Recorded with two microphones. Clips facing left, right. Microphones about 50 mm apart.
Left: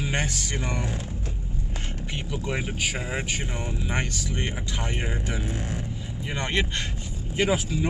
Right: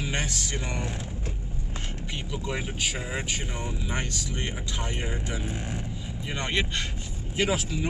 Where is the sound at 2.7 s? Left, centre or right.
Centre.